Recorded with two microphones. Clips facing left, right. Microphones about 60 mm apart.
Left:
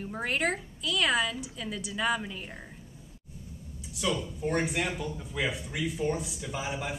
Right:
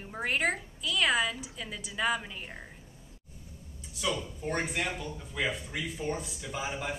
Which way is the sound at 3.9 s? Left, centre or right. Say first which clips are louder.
Left 2 dB; centre.